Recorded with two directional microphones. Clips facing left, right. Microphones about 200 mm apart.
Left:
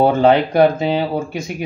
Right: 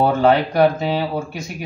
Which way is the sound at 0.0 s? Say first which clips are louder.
Left 3 dB; 20° left (ahead or behind).